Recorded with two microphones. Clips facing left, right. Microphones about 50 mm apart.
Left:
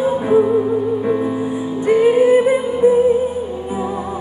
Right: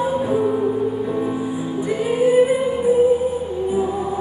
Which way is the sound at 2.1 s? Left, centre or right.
Left.